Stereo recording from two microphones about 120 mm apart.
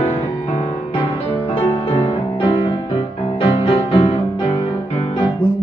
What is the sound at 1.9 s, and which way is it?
Music, 50° left (ahead or behind).